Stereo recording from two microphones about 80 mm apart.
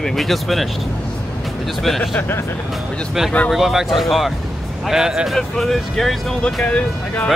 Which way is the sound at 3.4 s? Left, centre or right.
Centre.